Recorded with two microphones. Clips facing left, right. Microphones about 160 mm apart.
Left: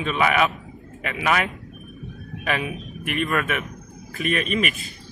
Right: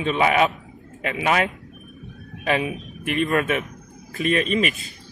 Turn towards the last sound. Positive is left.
turn(degrees=-30)  # may be behind; listen again after turning